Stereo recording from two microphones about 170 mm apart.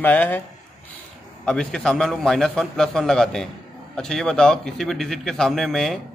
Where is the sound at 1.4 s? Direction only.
5° left (ahead or behind).